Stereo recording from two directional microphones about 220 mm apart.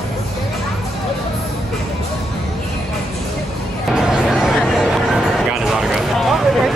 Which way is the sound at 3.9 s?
Centre (ahead or behind).